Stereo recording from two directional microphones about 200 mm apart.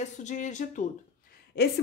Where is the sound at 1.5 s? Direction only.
50° left (ahead or behind).